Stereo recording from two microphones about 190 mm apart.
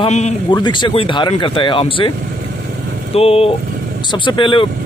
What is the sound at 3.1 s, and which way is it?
Speech, 30° left (ahead or behind).